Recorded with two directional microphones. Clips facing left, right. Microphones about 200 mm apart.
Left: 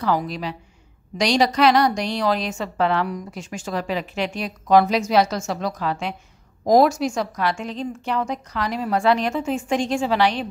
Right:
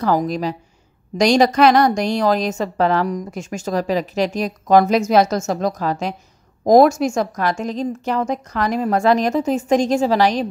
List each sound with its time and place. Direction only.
0.0 s a woman's voice: 45° right (ahead or behind)